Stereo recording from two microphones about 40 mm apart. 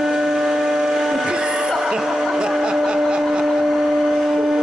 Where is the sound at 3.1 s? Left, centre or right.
Centre.